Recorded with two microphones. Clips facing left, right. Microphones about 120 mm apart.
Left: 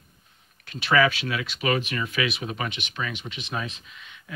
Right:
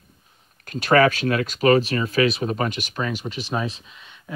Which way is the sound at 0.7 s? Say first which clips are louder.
Right 5 dB; 45° right (ahead or behind).